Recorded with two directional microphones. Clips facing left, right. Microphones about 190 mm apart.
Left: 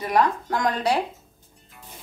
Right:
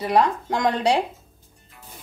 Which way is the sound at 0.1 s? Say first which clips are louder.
Right 1 dB; 25° right (ahead or behind).